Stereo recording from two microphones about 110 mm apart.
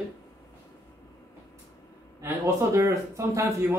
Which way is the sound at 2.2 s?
20° right (ahead or behind).